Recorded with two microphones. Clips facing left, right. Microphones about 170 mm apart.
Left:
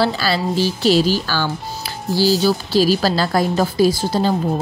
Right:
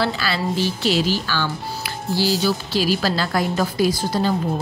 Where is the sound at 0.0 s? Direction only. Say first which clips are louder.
Left 4 dB; 35° left (ahead or behind).